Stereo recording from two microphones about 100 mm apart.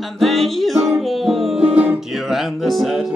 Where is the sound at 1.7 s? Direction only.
15° right (ahead or behind).